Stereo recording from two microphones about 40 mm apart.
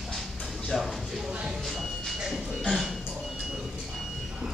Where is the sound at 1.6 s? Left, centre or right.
Centre.